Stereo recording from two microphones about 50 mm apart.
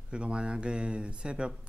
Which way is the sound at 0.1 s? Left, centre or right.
Right.